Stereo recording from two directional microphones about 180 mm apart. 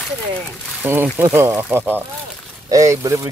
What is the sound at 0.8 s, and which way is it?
Speech, 10° right (ahead or behind).